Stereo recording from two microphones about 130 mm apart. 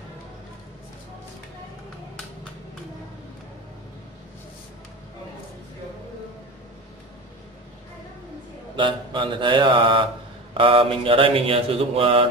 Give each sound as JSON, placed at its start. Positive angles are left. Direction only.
{"t": 8.7, "sound": "mantra", "side_deg": -40}